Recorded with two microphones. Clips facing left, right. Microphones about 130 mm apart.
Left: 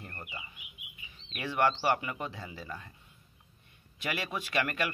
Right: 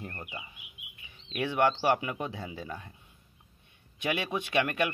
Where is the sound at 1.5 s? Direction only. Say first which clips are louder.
Right 2 dB; 15° right (ahead or behind).